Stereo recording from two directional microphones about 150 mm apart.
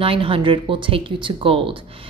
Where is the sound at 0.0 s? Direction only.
35° right (ahead or behind).